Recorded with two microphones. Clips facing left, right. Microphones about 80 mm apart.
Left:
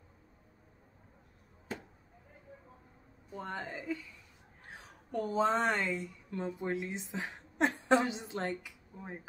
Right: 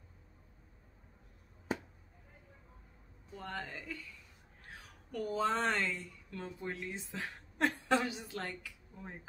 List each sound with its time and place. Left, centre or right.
3.3 s speech: centre